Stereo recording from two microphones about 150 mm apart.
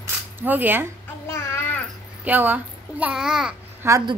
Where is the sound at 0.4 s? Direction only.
10° right (ahead or behind).